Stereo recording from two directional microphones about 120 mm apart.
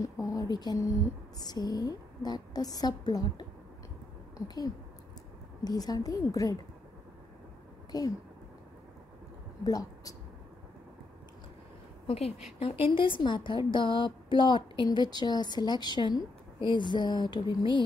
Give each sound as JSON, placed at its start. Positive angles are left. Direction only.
{"t": 0.0, "sound": "a woman's voice", "side_deg": 30}
{"t": 5.6, "sound": "a woman's voice", "side_deg": 35}
{"t": 7.9, "sound": "a woman's voice", "side_deg": 30}
{"t": 9.7, "sound": "a woman's voice", "side_deg": 30}
{"t": 12.1, "sound": "a woman's voice", "side_deg": 55}